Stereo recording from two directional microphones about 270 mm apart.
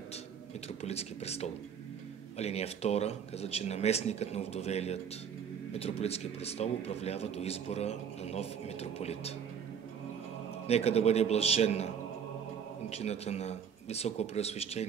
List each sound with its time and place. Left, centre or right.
0.8 s a man's voice: left
10.7 s a man's voice: left
12.9 s a man's voice: left